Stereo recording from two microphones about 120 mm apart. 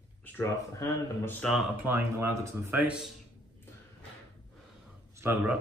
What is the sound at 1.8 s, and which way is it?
Speech, 20° right (ahead or behind).